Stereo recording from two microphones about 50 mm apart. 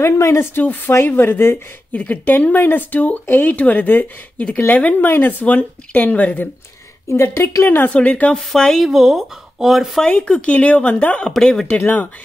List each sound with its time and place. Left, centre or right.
0.0 s speech: left
0.6 s speech: left
1.9 s speech: left
3.5 s speech: left
7.6 s speech: left
7.9 s speech: left
8.4 s speech: centre
8.8 s speech: centre
10.0 s speech: left
11.3 s speech: centre
11.8 s speech: left